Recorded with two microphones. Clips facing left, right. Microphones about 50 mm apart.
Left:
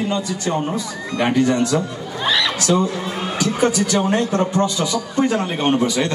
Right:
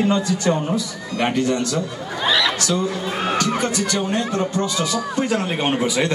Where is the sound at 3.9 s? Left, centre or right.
Left.